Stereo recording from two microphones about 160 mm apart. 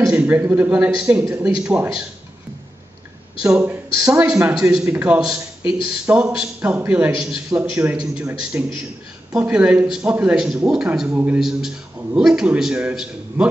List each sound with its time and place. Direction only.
0.0 s a man's voice: 10° right (ahead or behind)
4.0 s a man's voice: 15° right (ahead or behind)